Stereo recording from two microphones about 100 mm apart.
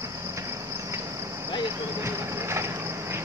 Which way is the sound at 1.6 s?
25° right (ahead or behind).